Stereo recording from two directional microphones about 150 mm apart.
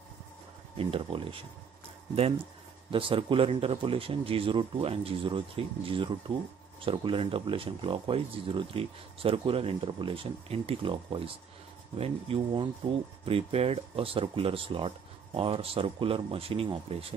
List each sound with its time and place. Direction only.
0.7 s speech: 35° right (ahead or behind)
2.9 s speech: 35° right (ahead or behind)